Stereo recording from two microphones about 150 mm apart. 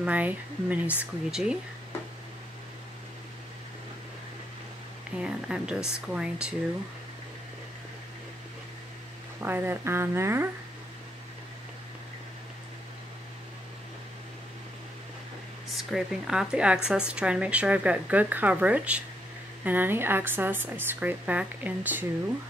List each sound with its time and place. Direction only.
0.0 s a woman's voice: 10° right (ahead or behind)
5.1 s a woman's voice: 5° right (ahead or behind)
9.4 s a woman's voice: 15° right (ahead or behind)
15.7 s a woman's voice: 5° right (ahead or behind)